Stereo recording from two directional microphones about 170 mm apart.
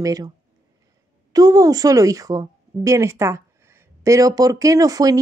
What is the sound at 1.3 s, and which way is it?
A woman's voice, 20° right (ahead or behind).